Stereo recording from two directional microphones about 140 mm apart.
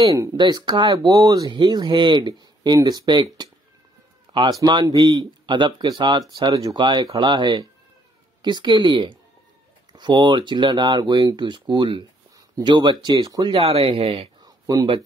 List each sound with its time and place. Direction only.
0.0 s speech: 25° right (ahead or behind)
4.3 s speech: 30° right (ahead or behind)
14.4 s a sound: 30° right (ahead or behind)